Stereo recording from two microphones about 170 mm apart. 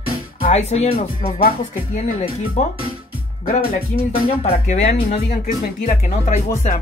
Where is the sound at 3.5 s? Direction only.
55° left (ahead or behind).